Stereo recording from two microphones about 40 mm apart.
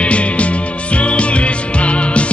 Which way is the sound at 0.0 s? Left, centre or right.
Left.